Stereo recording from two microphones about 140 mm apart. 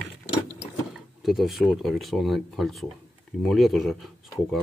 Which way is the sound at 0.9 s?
Centre (ahead or behind).